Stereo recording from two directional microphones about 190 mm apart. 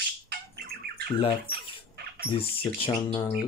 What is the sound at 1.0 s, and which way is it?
Speech, 25° left (ahead or behind).